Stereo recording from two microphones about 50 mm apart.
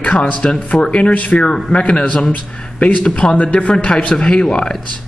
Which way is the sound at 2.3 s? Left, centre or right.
Left.